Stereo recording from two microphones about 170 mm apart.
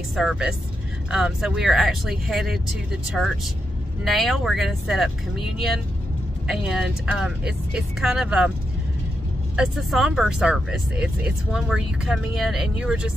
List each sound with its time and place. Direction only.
0.1 s speech: centre (ahead or behind)
4.0 s speech: centre (ahead or behind)
9.6 s speech: centre (ahead or behind)